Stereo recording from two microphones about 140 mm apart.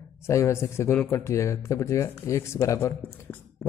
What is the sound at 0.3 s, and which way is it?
A man's voice, 20° left (ahead or behind).